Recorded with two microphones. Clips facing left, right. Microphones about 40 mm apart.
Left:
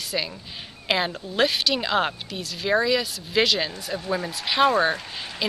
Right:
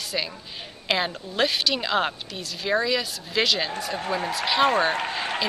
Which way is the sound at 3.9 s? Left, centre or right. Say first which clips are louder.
Right 1 dB; centre.